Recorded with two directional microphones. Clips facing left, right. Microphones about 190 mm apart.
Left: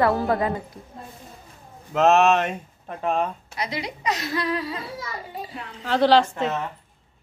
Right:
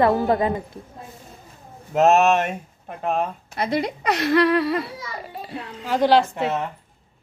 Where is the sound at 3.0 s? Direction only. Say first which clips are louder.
Even; 5° right (ahead or behind).